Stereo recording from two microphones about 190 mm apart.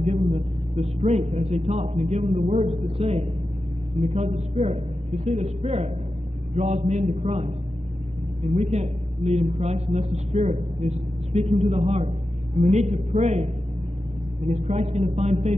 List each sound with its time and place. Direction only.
0.0 s a man's voice: 35° right (ahead or behind)
8.7 s a man's voice: 35° right (ahead or behind)